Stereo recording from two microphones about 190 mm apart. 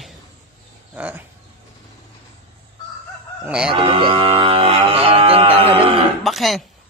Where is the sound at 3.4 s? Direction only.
5° right (ahead or behind).